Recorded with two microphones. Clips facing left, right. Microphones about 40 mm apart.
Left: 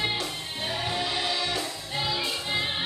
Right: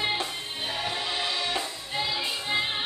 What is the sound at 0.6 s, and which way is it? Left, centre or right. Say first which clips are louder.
Music: left 2 dB; centre.